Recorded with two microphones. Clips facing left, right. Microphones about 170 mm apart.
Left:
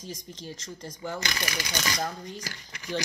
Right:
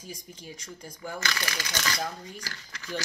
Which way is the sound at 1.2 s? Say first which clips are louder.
Right 3 dB; 15° left (ahead or behind).